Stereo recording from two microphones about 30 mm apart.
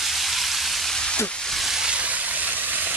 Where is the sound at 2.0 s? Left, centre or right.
Right.